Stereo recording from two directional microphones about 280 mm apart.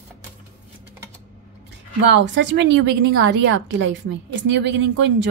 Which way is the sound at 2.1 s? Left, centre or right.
Right.